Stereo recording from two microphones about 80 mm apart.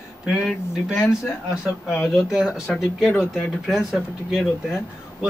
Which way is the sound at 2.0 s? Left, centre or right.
Centre.